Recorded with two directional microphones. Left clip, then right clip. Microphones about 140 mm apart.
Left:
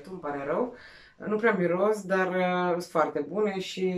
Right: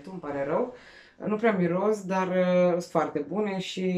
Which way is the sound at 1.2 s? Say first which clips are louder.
Even; 15° right (ahead or behind).